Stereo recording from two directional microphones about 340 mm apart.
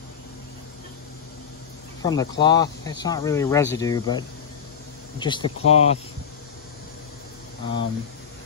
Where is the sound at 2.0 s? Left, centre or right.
Centre.